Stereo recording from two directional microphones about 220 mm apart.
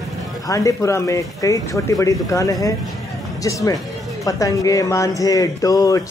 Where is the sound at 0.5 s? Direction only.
15° left (ahead or behind).